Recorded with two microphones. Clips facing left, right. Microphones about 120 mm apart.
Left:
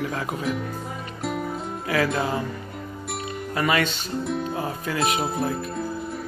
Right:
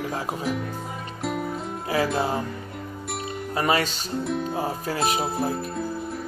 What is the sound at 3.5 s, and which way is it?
Speech, 35° right (ahead or behind).